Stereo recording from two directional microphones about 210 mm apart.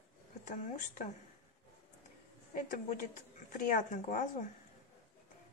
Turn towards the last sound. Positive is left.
turn(degrees=35)  # may be behind; listen again after turning